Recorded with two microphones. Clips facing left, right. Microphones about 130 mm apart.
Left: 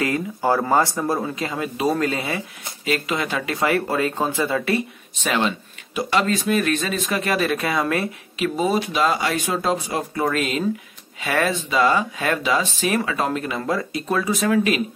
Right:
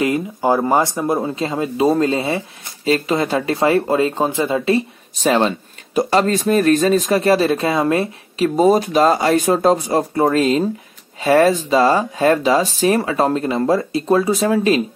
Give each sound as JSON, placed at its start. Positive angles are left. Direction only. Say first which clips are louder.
{"t": 0.0, "sound": "speech", "louder": "right 4 dB", "side_deg": -20}
{"t": 5.1, "sound": "speech", "louder": "right 6 dB", "side_deg": -35}